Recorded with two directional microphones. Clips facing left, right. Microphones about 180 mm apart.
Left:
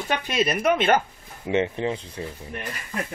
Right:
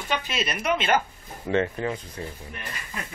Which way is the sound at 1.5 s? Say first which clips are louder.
Left 1 dB; 20° left (ahead or behind).